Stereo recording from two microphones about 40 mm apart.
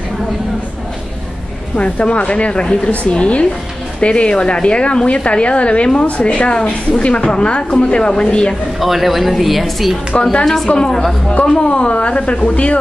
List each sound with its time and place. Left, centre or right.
1.8 s a woman's voice: left
8.7 s speech: centre
10.4 s a woman's voice: centre
11.4 s a woman's voice: left